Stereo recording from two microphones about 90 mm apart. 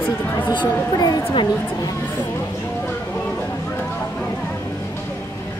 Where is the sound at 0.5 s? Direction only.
45° left (ahead or behind).